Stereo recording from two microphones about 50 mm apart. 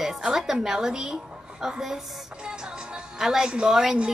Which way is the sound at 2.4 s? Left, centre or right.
Centre.